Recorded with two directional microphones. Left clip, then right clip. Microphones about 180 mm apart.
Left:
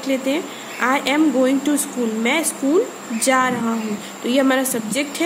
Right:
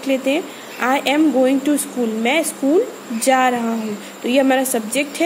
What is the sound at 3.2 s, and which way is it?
A woman's voice, 15° right (ahead or behind).